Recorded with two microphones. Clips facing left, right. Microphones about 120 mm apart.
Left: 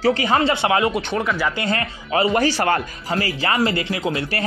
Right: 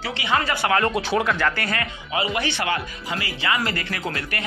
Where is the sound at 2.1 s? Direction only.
40° left (ahead or behind); by 4.1 s 20° left (ahead or behind).